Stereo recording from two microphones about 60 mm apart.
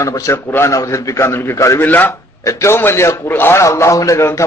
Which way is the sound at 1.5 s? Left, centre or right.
Left.